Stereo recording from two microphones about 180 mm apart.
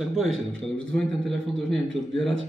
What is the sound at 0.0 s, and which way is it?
A man's voice, centre (ahead or behind).